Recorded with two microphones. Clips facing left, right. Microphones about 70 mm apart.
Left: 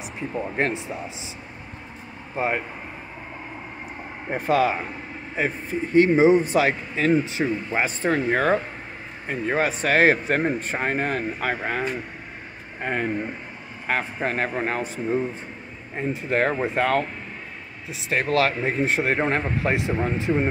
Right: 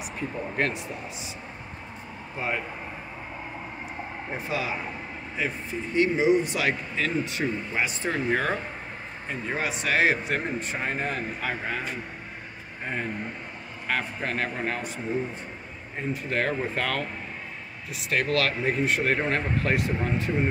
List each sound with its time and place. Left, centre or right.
0.6 s speech: left
2.3 s speech: left
4.3 s speech: left
5.3 s speech: left
12.9 s speech: left
13.8 s speech: left
16.1 s speech: left